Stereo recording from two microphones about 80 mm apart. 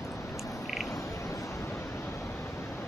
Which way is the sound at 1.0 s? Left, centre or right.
Left.